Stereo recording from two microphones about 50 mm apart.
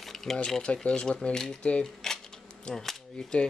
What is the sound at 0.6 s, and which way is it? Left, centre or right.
Speech, centre.